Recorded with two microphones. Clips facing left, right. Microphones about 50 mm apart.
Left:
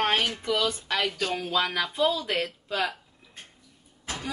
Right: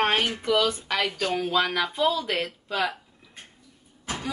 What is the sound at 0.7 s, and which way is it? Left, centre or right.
Speech, centre.